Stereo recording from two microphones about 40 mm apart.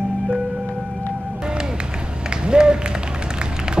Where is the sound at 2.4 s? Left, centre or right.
Centre.